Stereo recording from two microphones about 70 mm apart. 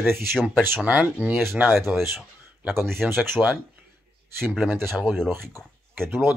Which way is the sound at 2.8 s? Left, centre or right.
Centre.